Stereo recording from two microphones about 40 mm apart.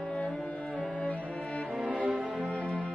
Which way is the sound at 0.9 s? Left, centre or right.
Left.